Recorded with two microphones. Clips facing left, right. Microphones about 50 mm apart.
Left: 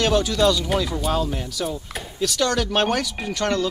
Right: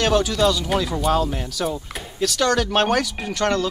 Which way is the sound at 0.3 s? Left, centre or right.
Centre.